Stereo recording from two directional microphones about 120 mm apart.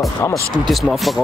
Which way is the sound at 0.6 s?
Centre (ahead or behind).